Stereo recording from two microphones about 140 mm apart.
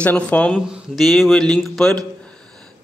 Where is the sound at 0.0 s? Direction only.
10° left (ahead or behind).